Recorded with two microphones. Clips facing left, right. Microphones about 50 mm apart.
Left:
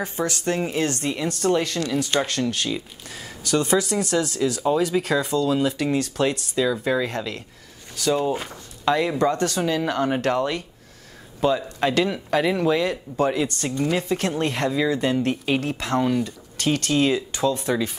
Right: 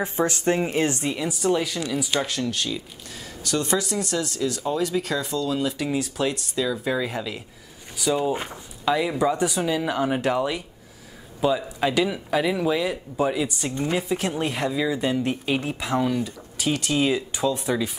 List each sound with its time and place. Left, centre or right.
0.0 s speech: right
1.1 s speech: centre
3.4 s speech: centre